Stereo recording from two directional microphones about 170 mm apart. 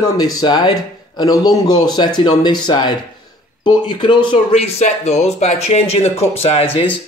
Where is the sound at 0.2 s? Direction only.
25° left (ahead or behind).